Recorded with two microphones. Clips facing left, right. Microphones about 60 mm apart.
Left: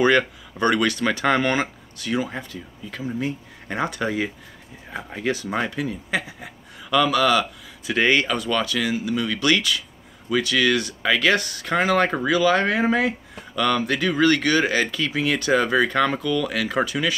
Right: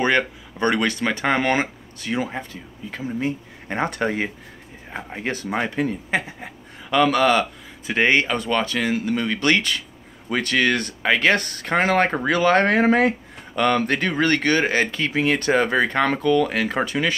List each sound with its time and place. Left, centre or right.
0.0 s speech: right
4.9 s speech: right
12.3 s speech: right
13.6 s speech: right